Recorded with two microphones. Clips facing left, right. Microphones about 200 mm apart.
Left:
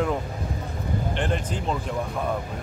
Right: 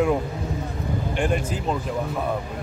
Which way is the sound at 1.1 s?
10° right (ahead or behind).